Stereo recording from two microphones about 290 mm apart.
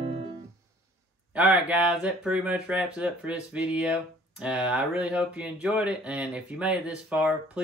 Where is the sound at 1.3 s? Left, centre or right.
Centre.